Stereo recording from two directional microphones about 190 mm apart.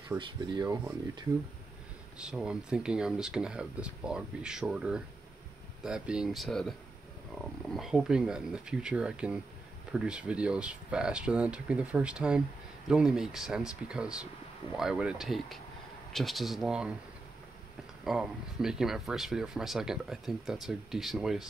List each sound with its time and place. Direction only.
0.2 s speech: 25° right (ahead or behind)
2.1 s speech: 5° right (ahead or behind)
18.0 s speech: 5° right (ahead or behind)